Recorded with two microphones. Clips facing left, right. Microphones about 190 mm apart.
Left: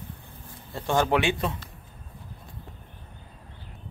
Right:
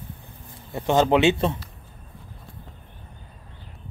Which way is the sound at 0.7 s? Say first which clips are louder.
Right 5 dB; 20° right (ahead or behind).